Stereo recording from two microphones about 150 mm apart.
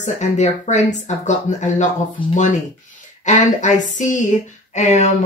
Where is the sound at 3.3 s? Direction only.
55° left (ahead or behind).